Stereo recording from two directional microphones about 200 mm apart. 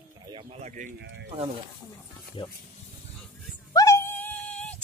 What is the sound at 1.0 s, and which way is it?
Snake, 60° right (ahead or behind).